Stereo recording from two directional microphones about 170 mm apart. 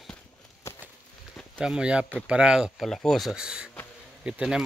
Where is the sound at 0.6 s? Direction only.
15° left (ahead or behind).